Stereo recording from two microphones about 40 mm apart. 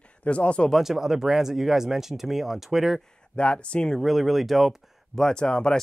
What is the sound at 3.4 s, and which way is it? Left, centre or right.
Speech, left.